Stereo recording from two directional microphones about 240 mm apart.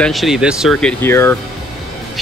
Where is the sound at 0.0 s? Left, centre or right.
Centre.